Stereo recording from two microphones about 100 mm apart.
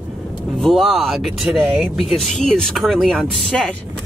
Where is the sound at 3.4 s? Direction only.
10° left (ahead or behind).